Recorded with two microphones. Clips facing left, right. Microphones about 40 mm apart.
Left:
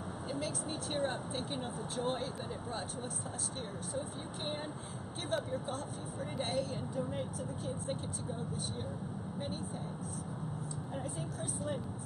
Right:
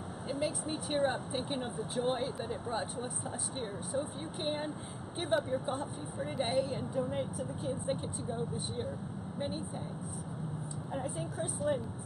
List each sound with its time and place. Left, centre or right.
0.3 s speech: centre
5.3 s speech: centre
11.0 s speech: centre